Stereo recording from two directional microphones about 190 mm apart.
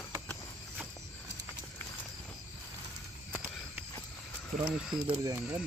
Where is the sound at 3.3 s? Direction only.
5° left (ahead or behind).